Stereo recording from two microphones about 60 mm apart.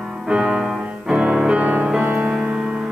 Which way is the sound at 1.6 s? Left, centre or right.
Right.